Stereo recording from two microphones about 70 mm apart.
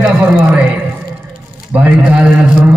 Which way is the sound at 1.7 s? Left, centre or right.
Right.